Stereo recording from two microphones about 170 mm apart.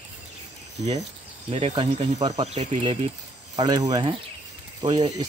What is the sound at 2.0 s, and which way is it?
Speech, 40° right (ahead or behind).